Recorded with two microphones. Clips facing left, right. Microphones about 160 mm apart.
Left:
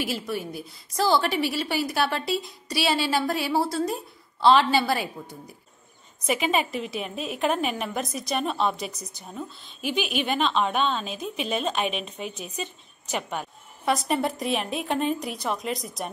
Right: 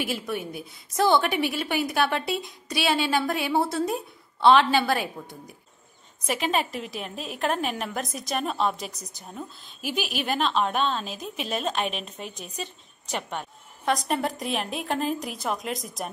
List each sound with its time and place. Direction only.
0.4 s a woman's voice: 55° right (ahead or behind)
0.9 s a woman's voice: centre (ahead or behind)
6.2 s a woman's voice: centre (ahead or behind)